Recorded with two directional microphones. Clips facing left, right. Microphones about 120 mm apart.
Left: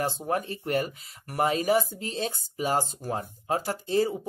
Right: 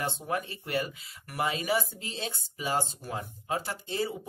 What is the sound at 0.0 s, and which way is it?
Speech, 40° left (ahead or behind).